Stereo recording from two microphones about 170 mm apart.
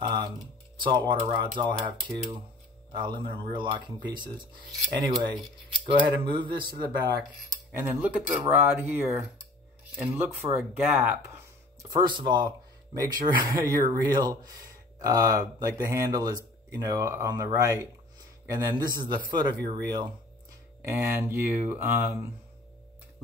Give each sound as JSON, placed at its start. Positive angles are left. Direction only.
{"t": 0.0, "sound": "a sound", "side_deg": -25}
{"t": 0.7, "sound": "speech", "side_deg": -25}
{"t": 7.7, "sound": "speech", "side_deg": -10}
{"t": 10.4, "sound": "speech", "side_deg": -10}
{"t": 11.9, "sound": "speech", "side_deg": -25}